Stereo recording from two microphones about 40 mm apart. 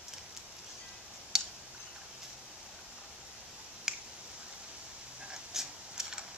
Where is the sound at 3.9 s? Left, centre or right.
Centre.